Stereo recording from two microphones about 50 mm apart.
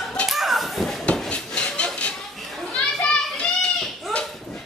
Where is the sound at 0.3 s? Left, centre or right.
Centre.